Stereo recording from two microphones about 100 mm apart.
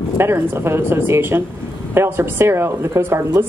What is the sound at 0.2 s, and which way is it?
A woman's voice, 25° right (ahead or behind).